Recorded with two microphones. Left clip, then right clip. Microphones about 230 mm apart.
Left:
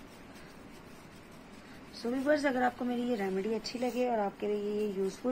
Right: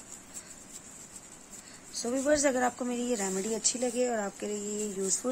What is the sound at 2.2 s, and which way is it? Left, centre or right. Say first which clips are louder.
Speech: right 2 dB; right.